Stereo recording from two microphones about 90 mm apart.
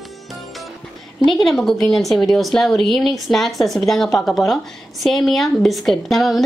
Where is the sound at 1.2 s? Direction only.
Centre (ahead or behind).